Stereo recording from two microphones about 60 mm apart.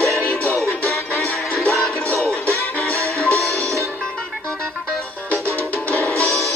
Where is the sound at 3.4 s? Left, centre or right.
Centre.